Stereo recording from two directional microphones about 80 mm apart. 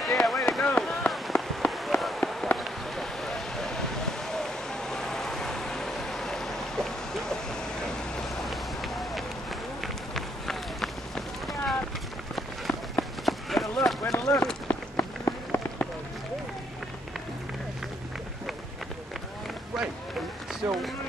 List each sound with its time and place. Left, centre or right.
0.0 s a sound: centre
2.5 s vehicle: centre
9.8 s run: centre
15.2 s rain on surface: left
19.7 s run: centre
20.6 s run: centre